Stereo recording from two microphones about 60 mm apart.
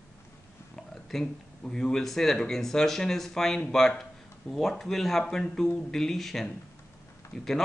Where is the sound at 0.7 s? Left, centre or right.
Centre.